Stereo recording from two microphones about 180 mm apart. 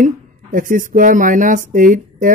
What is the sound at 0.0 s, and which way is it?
Speech, 50° right (ahead or behind).